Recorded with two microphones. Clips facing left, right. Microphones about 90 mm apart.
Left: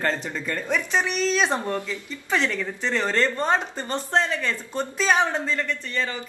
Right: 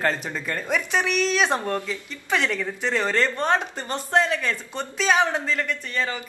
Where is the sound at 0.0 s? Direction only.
15° right (ahead or behind).